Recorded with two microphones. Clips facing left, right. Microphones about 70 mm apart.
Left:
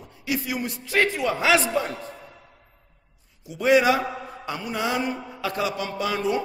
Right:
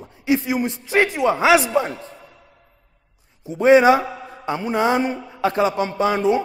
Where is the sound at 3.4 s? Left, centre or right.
Right.